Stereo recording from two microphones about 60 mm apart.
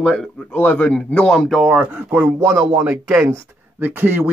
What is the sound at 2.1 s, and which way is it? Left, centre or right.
Speech, right.